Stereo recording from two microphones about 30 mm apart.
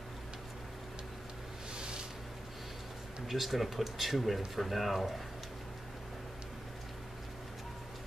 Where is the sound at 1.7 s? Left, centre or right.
Right.